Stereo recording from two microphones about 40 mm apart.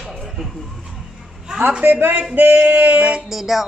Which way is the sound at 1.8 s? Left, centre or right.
Right.